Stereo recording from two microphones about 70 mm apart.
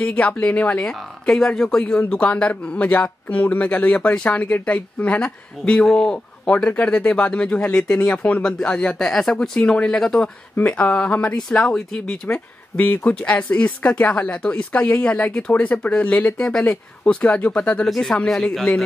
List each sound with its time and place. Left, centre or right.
0.0 s speech: centre
12.8 s speech: left; by 15.6 s centre
15.6 s speech: left
17.8 s speech: centre